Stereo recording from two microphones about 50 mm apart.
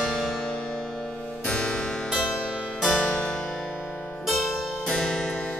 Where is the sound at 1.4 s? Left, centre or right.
Left.